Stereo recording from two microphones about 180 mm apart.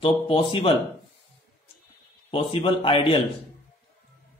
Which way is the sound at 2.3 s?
30° left (ahead or behind).